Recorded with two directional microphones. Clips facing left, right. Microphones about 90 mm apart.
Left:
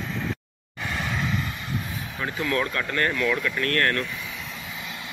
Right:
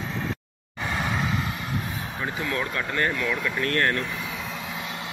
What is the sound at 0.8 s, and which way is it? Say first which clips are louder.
Vehicle: right 2 dB; 20° right (ahead or behind).